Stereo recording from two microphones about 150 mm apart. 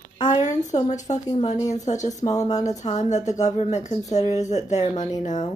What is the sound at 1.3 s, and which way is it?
A woman's voice, 35° left (ahead or behind).